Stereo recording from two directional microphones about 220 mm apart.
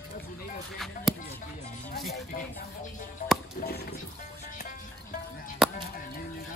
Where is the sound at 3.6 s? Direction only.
45° left (ahead or behind).